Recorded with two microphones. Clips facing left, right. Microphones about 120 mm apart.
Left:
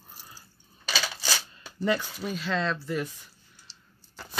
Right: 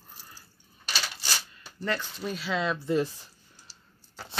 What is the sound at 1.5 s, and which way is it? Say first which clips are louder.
Speech: left 6 dB; 15° left (ahead or behind).